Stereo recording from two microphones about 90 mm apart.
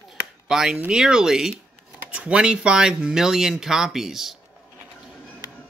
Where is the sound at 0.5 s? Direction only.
5° right (ahead or behind).